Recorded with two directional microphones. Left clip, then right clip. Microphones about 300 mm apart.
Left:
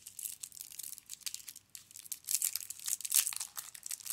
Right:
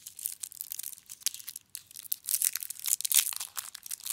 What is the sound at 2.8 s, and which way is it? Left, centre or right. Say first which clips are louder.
Crumpling: right 6 dB; centre.